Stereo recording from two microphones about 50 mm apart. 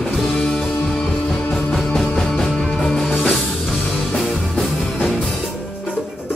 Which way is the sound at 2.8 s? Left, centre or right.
Centre.